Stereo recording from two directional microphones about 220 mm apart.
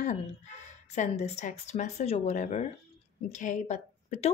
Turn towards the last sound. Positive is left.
turn(degrees=30)  # may be behind; listen again after turning